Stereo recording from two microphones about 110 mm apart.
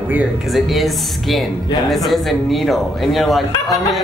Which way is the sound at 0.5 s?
Centre (ahead or behind).